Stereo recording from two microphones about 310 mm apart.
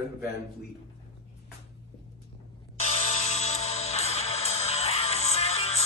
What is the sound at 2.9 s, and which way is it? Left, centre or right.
Music, centre.